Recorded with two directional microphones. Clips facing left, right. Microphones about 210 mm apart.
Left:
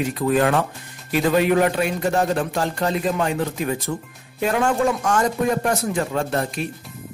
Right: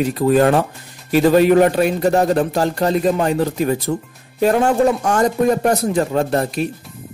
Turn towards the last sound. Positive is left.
turn(degrees=-40)  # may be behind; listen again after turning